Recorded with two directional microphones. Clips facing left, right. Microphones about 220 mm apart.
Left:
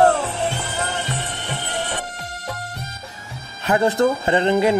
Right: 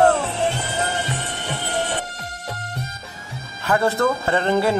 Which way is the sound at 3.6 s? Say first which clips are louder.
Left 2 dB; 15° left (ahead or behind).